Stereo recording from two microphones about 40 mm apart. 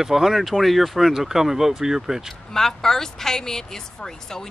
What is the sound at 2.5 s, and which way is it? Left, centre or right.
Speech, centre.